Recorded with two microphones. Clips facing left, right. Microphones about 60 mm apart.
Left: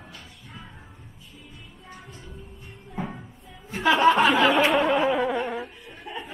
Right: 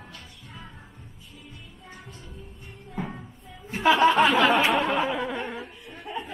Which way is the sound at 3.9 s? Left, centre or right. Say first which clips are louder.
Even; centre.